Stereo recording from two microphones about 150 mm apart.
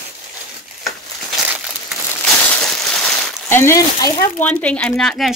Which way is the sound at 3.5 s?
15° left (ahead or behind).